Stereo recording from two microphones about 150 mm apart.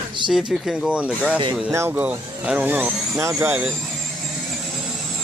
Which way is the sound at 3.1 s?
20° right (ahead or behind).